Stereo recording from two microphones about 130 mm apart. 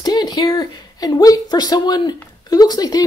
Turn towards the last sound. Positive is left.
turn(degrees=30)  # may be behind; listen again after turning